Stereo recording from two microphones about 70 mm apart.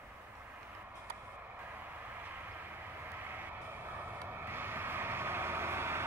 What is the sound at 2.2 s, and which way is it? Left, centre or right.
Vehicle, right.